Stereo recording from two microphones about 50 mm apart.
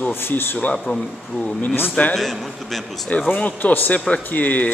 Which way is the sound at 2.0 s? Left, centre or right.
Left.